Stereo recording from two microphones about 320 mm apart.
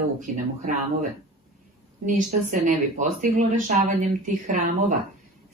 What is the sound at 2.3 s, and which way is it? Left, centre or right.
Speech, right.